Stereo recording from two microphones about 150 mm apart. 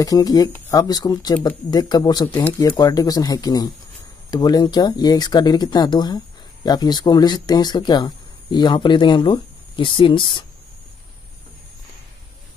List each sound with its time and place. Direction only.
0.0 s speech: 25° left (ahead or behind)
2.3 s speech: 10° left (ahead or behind)
2.8 s speech: 25° left (ahead or behind)